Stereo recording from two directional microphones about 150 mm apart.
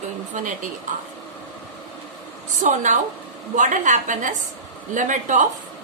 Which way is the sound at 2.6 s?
55° right (ahead or behind).